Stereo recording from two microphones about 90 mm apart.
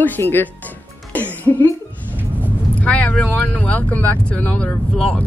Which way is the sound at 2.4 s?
15° left (ahead or behind).